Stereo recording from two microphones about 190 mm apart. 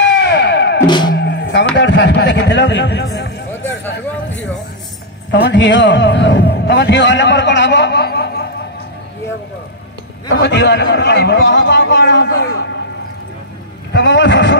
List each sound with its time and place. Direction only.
0.0 s music: 65° left (ahead or behind)
0.8 s music: 25° left (ahead or behind)
1.1 s vehicle: 65° left (ahead or behind)
1.8 s a man's voice: 65° left (ahead or behind)
5.3 s a man's voice: 65° left (ahead or behind)
10.3 s a man's voice: 65° left (ahead or behind)
13.9 s a man's voice: 70° left (ahead or behind)